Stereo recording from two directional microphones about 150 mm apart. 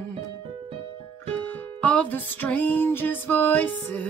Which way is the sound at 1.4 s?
10° left (ahead or behind).